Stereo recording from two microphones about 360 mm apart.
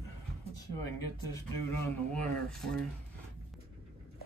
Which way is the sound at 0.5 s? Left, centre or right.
Left.